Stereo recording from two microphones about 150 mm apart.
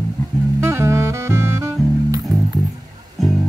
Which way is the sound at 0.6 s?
20° right (ahead or behind).